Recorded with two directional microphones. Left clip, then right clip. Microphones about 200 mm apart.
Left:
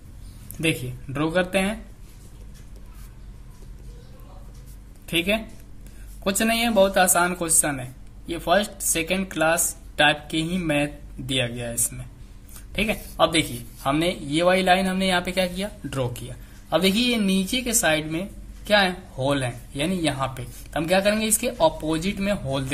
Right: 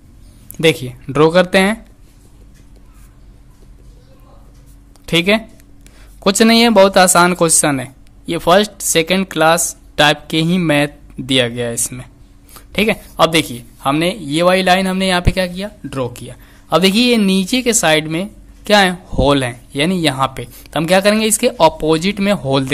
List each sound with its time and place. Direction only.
0.6 s speech: 50° right (ahead or behind)
5.0 s a man's voice: 50° right (ahead or behind)